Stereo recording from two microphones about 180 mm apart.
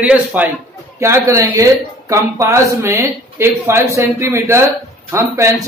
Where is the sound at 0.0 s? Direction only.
10° right (ahead or behind).